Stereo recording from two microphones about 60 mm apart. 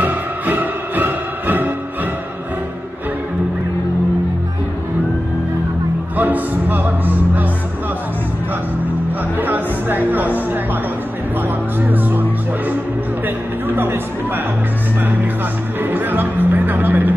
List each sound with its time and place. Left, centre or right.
0.0 s music: right
6.1 s music: right
9.4 s music: right
13.7 s a sound: right
15.8 s music: right